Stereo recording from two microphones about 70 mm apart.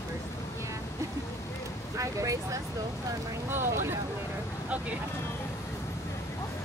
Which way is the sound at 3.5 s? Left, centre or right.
Right.